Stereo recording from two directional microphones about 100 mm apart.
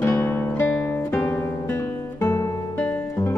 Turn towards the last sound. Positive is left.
turn(degrees=20)  # may be behind; listen again after turning